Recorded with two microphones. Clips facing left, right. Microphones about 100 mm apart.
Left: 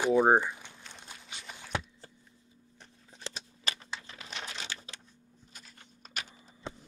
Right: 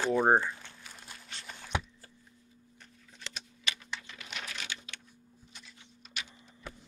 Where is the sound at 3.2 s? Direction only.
30° left (ahead or behind).